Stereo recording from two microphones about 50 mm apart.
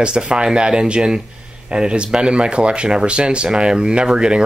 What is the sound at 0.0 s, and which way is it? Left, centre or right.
Speech, centre.